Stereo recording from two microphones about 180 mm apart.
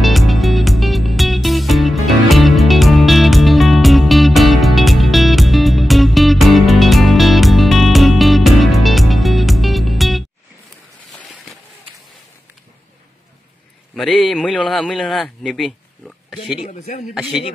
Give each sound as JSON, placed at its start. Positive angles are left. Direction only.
{"t": 0.0, "sound": "music", "side_deg": 0}
{"t": 13.9, "sound": "a man's voice", "side_deg": 0}
{"t": 16.6, "sound": "speech", "side_deg": 45}
{"t": 17.1, "sound": "speech", "side_deg": -5}